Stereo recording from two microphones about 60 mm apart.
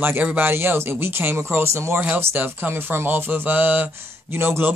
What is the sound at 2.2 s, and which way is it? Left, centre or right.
Speech, right.